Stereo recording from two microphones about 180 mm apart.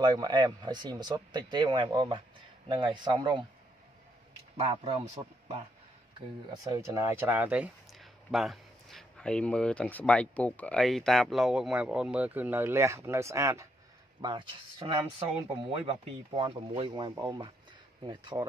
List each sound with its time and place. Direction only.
0.0 s speech: 25° right (ahead or behind)
4.6 s a man's voice: 35° right (ahead or behind)
6.6 s speech: 20° right (ahead or behind)
14.2 s speech: 30° right (ahead or behind)